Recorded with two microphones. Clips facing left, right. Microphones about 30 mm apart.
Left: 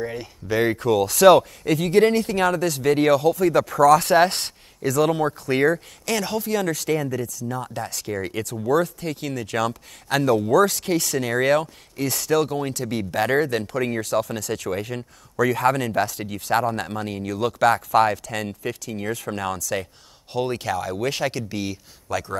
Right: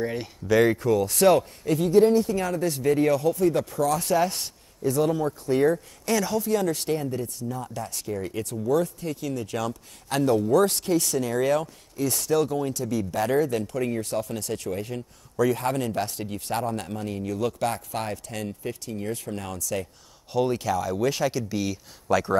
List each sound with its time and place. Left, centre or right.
0.0 s speech: centre
0.5 s speech: centre
0.7 s speech: left
7.4 s speech: left
12.0 s speech: left
20.3 s speech: left
22.1 s a man's voice: centre